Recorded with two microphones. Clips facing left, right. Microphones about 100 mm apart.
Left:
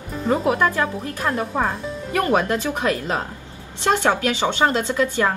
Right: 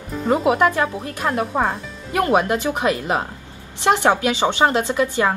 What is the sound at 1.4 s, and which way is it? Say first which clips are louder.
Speech: right 3 dB; 5° right (ahead or behind).